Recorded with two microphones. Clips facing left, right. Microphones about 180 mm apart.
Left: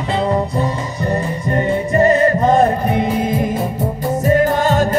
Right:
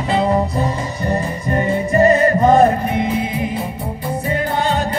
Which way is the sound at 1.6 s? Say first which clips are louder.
Even; 30° left (ahead or behind).